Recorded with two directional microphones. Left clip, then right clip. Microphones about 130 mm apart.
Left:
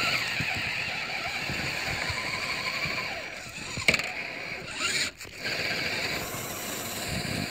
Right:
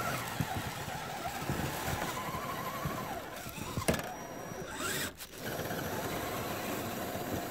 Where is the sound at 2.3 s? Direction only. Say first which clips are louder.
Left 7 dB; 15° right (ahead or behind).